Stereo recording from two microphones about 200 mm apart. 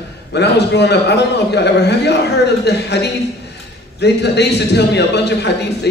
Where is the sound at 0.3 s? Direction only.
55° left (ahead or behind).